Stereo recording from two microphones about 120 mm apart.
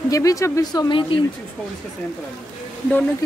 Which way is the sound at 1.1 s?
50° left (ahead or behind).